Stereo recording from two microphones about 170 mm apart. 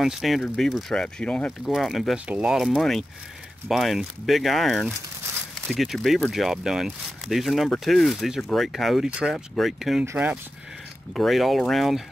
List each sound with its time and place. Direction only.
0.0 s speech: centre (ahead or behind)